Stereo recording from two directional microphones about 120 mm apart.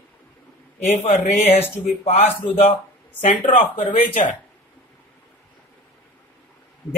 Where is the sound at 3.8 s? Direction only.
50° left (ahead or behind).